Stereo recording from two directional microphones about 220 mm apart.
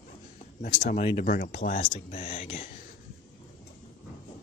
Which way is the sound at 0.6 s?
40° left (ahead or behind).